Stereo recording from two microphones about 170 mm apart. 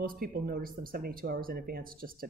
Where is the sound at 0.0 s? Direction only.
60° right (ahead or behind).